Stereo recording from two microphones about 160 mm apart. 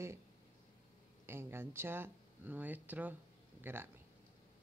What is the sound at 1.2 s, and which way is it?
Speech, 15° right (ahead or behind).